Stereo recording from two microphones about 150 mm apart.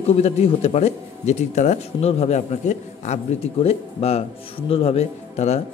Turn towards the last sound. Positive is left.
turn(degrees=45)  # may be behind; listen again after turning